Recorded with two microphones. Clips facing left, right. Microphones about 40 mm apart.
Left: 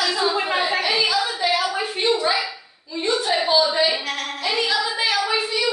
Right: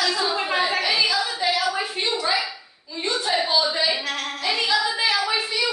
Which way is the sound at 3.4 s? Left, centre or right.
Left.